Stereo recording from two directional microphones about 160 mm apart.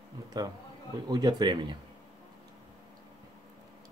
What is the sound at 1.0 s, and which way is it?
Speech, 25° right (ahead or behind).